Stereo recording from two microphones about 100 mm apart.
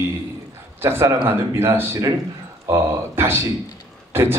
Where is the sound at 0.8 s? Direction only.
25° right (ahead or behind).